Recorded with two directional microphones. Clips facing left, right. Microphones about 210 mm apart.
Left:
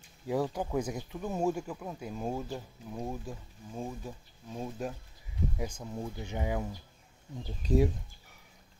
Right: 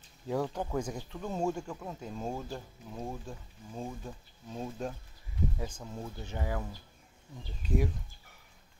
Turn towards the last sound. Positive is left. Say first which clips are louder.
# left 5 dB
turn(degrees=30)  # may be behind; listen again after turning